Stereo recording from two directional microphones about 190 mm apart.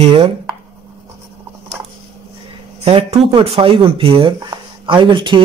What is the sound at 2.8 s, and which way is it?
Speech, 30° right (ahead or behind).